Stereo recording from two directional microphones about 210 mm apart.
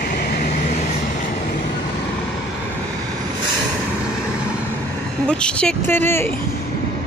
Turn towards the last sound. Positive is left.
turn(degrees=10)  # may be behind; listen again after turning